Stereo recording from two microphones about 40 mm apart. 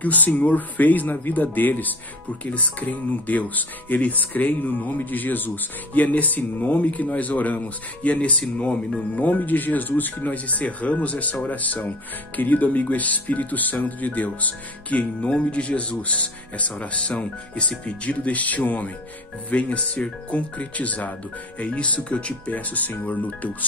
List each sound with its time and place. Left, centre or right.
0.0 s speech: left
2.4 s speech: left
9.1 s speech: left
10.3 s speech: left